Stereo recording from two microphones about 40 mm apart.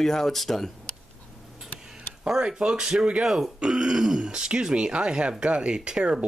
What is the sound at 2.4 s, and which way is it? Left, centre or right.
Speech, right.